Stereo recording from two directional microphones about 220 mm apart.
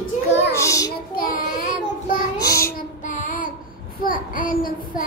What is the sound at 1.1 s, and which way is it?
Child singing, 40° left (ahead or behind).